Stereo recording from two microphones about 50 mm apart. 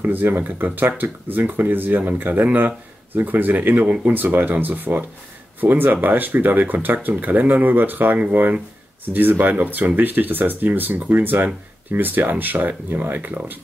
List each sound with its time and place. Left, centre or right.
0.0 s speech: right